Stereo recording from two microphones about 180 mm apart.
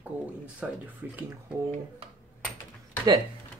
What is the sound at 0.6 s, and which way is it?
Speech, 10° right (ahead or behind).